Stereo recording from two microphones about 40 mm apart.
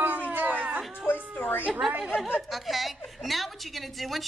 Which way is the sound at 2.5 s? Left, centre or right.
Centre.